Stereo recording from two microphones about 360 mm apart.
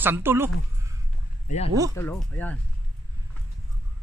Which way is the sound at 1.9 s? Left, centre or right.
Centre.